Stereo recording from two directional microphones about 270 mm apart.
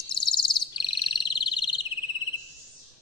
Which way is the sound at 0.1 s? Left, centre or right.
Centre.